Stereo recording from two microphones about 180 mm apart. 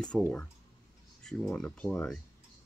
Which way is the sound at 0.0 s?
5° left (ahead or behind).